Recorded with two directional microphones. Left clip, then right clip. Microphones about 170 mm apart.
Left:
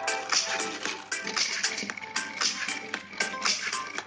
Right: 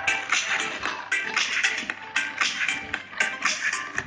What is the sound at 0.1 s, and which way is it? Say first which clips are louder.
Music: right 5 dB; 40° left (ahead or behind).